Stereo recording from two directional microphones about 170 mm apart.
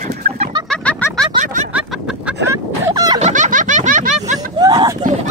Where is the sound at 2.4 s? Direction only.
20° right (ahead or behind).